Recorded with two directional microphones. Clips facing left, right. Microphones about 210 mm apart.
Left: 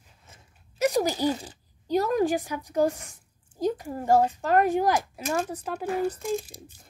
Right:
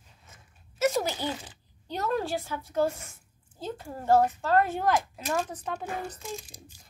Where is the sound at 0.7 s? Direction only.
15° left (ahead or behind).